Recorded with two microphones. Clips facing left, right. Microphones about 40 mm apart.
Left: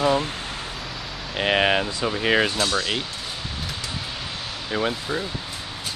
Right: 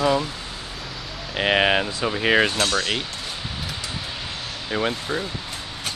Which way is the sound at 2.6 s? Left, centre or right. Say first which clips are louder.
Right 1 dB; right.